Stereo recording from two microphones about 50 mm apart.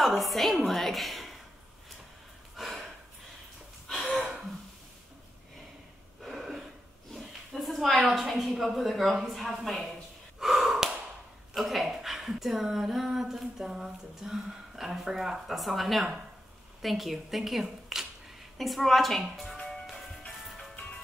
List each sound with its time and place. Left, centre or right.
0.0 s a woman's voice: centre
2.5 s a sound: centre
6.2 s a sound: centre
10.4 s gasp: centre
11.5 s speech: centre
19.5 s music: centre